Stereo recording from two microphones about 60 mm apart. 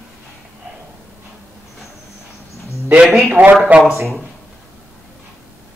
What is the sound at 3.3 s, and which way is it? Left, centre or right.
Speech, right.